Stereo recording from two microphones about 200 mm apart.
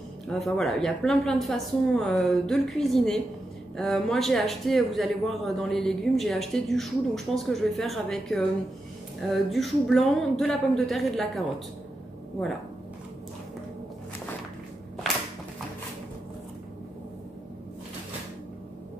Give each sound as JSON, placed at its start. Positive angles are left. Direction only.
{"t": 0.3, "sound": "speech", "side_deg": 0}